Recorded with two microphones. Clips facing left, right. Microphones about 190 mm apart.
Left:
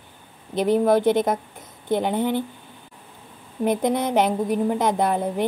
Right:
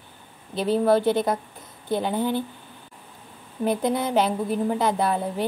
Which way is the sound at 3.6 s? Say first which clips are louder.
Left 2 dB; 20° left (ahead or behind).